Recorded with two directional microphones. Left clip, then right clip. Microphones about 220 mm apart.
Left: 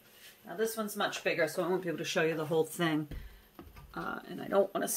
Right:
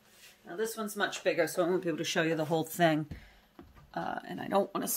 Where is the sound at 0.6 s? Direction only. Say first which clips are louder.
Even; 30° right (ahead or behind).